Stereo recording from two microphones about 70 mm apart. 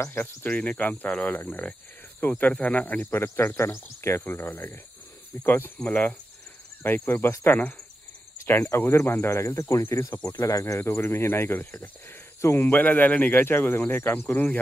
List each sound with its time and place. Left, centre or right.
0.2 s speech: left
8.6 s speech: left
10.4 s speech: left
10.8 s speech: left
11.5 s speech: left
12.4 s speech: left